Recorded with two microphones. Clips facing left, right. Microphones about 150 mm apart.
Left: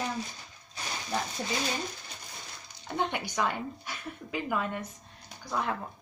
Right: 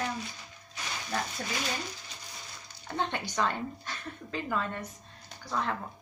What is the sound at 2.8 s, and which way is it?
Speech, 15° left (ahead or behind).